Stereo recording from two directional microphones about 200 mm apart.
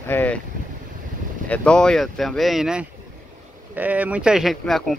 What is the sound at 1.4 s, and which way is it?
Speech, 5° left (ahead or behind).